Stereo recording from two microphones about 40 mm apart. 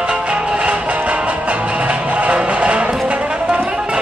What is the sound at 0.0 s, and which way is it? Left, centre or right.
Music, right.